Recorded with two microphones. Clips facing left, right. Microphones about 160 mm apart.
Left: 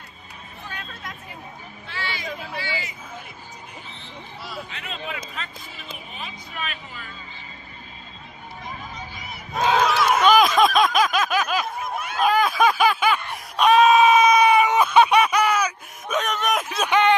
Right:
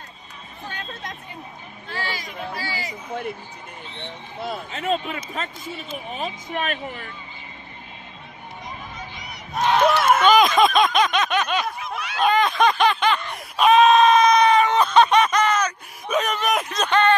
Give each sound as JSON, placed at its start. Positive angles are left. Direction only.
{"t": 0.7, "sound": "hubbub", "side_deg": -30}
{"t": 1.9, "sound": "speech", "side_deg": -40}
{"t": 3.1, "sound": "speech", "side_deg": -60}
{"t": 9.9, "sound": "a sound", "side_deg": -55}
{"t": 10.2, "sound": "a sound", "side_deg": 0}
{"t": 11.8, "sound": "snicker", "side_deg": 50}
{"t": 12.2, "sound": "snicker", "side_deg": 5}
{"t": 13.6, "sound": "screaming", "side_deg": 0}
{"t": 16.1, "sound": "a sound", "side_deg": 0}